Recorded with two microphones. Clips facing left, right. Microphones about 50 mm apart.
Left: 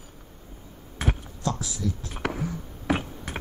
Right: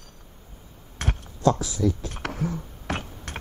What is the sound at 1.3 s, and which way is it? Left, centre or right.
Speech, right.